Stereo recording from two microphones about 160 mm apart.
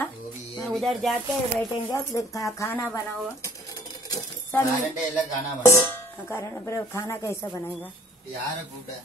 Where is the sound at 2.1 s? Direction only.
25° left (ahead or behind).